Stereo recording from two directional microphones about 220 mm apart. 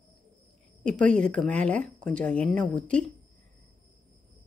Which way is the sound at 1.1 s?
5° left (ahead or behind).